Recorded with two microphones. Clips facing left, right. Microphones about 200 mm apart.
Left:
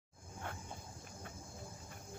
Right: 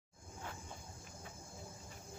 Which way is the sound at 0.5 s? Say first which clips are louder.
Left 3 dB; 60° left (ahead or behind).